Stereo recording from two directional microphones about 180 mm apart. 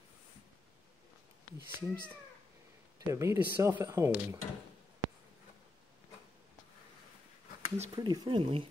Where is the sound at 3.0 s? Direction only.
15° right (ahead or behind).